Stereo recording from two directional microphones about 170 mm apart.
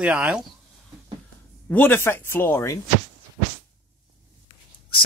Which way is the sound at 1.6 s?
10° left (ahead or behind).